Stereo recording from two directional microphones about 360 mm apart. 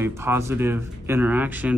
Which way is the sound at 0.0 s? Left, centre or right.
Centre.